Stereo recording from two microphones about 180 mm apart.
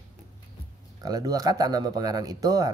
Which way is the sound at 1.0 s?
20° right (ahead or behind).